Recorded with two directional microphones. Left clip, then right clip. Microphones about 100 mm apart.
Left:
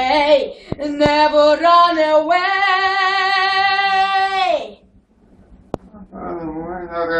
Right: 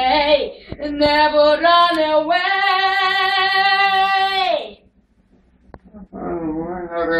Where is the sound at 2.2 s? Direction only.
35° left (ahead or behind).